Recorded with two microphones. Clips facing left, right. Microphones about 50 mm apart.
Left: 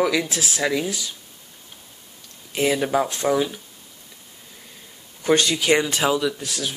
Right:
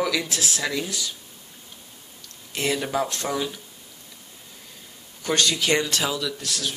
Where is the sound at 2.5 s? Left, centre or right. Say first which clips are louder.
Left 5 dB; centre.